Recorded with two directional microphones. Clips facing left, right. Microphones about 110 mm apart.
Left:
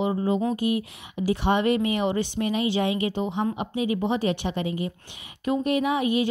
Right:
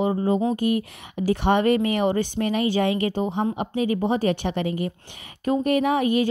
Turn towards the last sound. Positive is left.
turn(degrees=-45)  # may be behind; listen again after turning